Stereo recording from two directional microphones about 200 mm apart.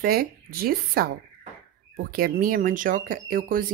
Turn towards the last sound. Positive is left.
turn(degrees=-45)  # may be behind; listen again after turning